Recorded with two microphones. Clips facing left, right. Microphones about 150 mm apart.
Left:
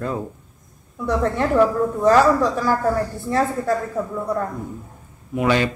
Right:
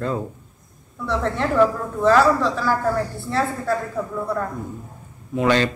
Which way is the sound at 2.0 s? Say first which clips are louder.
Even; 15° left (ahead or behind).